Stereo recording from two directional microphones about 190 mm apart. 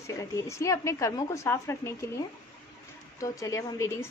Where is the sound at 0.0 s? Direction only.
15° left (ahead or behind).